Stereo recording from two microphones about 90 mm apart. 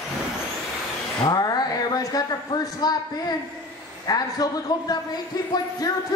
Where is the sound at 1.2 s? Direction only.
50° left (ahead or behind).